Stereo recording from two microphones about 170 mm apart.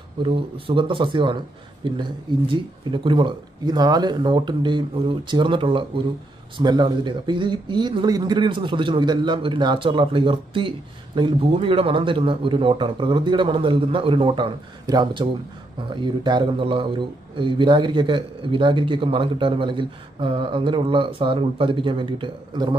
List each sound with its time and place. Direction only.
0.2 s speech: 30° right (ahead or behind)